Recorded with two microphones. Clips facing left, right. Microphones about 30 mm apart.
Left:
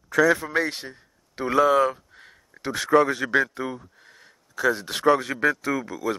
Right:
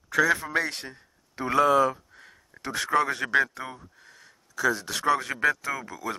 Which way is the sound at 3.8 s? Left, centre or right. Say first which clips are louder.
Left 1 dB; centre.